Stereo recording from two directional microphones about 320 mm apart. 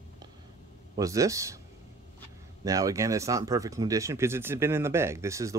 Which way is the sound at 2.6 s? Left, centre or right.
Centre.